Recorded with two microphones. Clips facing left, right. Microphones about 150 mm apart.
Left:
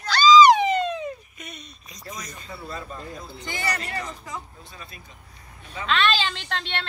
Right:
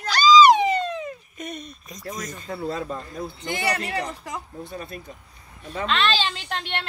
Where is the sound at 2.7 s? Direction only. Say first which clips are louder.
Right 5 dB; 65° right (ahead or behind).